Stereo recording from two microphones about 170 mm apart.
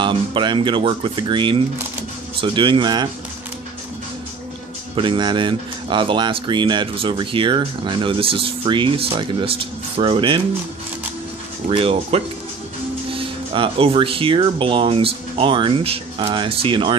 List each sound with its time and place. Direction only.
0.0 s speech: 30° right (ahead or behind)
4.9 s speech: 30° right (ahead or behind)
11.7 s speech: 35° right (ahead or behind)